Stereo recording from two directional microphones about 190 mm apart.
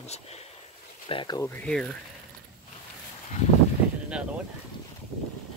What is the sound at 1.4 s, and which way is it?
Speech, 10° left (ahead or behind).